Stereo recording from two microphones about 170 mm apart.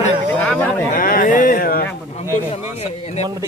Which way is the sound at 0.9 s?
55° left (ahead or behind).